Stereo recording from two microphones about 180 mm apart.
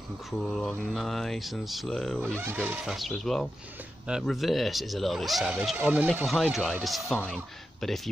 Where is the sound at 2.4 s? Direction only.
10° right (ahead or behind).